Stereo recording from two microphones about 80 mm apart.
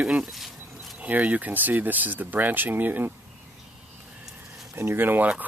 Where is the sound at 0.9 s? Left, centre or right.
Centre.